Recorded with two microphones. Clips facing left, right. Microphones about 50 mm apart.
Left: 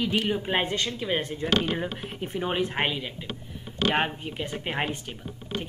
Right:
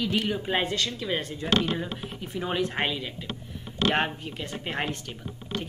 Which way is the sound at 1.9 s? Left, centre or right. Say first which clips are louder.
Left 2 dB; left.